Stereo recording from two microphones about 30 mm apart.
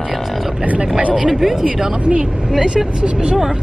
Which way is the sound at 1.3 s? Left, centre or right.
Centre.